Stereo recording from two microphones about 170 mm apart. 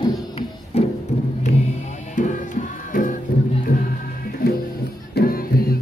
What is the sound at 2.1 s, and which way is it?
Music, 45° left (ahead or behind).